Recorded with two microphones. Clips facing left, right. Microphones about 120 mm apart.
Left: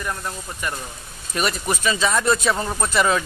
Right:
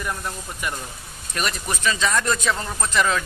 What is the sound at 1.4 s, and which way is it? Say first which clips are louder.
A man's voice: left 3 dB; 5° left (ahead or behind).